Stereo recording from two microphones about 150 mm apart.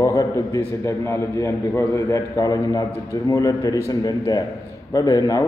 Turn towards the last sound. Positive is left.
turn(degrees=25)  # may be behind; listen again after turning